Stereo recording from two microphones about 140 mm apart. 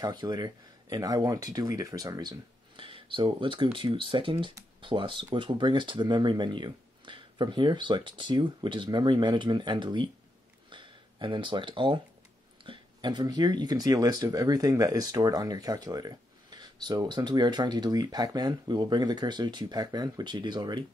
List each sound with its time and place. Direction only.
0.0 s speech: 30° right (ahead or behind)